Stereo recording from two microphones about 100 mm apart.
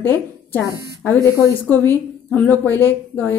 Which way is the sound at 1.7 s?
15° left (ahead or behind).